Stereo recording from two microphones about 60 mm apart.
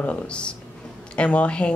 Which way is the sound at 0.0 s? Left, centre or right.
Left.